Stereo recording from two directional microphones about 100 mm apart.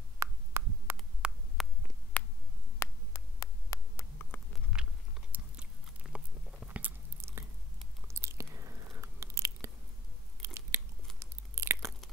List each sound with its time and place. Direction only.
0.2 s heart sounds: 30° right (ahead or behind)
1.2 s hum: 10° right (ahead or behind)
1.6 s a sound: centre (ahead or behind)
2.8 s a sound: 30° left (ahead or behind)
4.7 s biting: 10° right (ahead or behind)
7.2 s chewing: 25° right (ahead or behind)
8.1 s biting: 30° right (ahead or behind)
10.4 s crunch: 25° right (ahead or behind)